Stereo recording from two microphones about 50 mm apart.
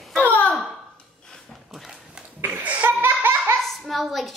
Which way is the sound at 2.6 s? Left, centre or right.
Right.